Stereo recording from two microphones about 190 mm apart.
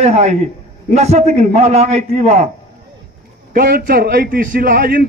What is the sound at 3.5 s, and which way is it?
A man's voice, 50° right (ahead or behind).